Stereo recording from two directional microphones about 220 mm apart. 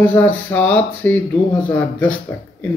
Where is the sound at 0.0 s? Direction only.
10° left (ahead or behind).